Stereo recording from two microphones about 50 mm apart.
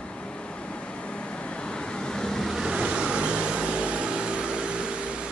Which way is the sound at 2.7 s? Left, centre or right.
Centre.